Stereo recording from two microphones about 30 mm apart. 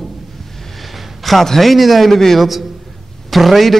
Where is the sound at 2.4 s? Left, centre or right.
Centre.